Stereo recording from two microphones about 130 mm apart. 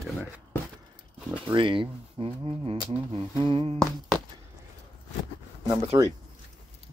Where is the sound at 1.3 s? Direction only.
40° right (ahead or behind).